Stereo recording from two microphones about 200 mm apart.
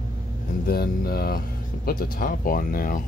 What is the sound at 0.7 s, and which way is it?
Speech, 50° left (ahead or behind).